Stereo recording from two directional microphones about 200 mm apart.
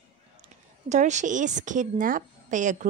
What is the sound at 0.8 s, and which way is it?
A woman's voice, 35° right (ahead or behind).